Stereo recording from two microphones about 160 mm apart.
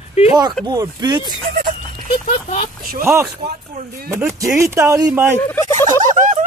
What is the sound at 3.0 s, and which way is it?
Speech, 15° right (ahead or behind).